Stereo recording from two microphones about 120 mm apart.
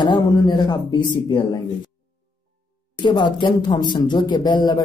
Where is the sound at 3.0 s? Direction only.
40° left (ahead or behind).